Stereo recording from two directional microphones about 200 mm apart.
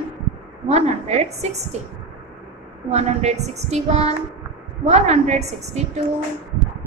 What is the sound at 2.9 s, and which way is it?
A woman's voice, 35° right (ahead or behind).